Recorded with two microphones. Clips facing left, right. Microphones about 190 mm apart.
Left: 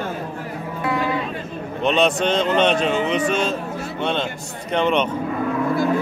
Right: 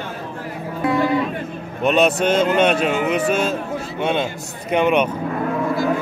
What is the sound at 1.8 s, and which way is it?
A man's voice, 5° right (ahead or behind).